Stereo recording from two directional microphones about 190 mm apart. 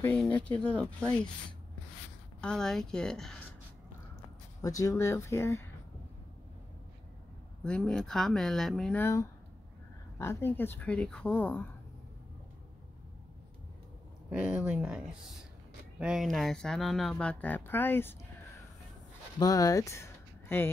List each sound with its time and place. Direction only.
0.2 s speech: 5° left (ahead or behind)
2.4 s speech: 5° left (ahead or behind)
4.6 s speech: 15° left (ahead or behind)
7.6 s speech: 5° left (ahead or behind)
14.4 s speech: 5° right (ahead or behind); by 18.1 s 10° left (ahead or behind)
19.3 s speech: 20° left (ahead or behind)